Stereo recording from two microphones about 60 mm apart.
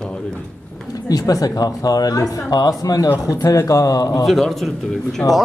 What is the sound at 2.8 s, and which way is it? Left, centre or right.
Speech, left.